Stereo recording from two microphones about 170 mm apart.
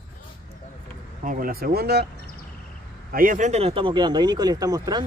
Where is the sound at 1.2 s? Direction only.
55° right (ahead or behind); by 2.0 s 70° right (ahead or behind).